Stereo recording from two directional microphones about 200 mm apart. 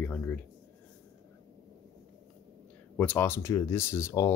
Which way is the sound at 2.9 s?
10° left (ahead or behind).